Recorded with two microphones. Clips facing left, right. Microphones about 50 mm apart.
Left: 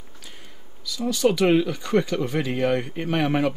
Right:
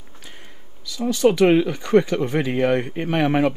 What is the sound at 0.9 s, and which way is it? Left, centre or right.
Speech, right.